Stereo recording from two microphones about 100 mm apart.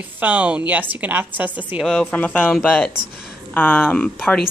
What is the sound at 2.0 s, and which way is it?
Speech, 15° left (ahead or behind).